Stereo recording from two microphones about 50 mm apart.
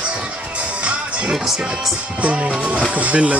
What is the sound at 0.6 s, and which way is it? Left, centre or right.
Music, right.